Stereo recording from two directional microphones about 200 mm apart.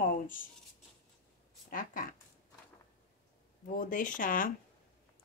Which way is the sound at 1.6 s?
45° left (ahead or behind).